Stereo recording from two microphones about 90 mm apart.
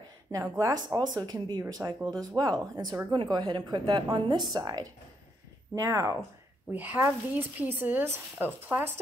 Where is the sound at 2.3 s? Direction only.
50° right (ahead or behind).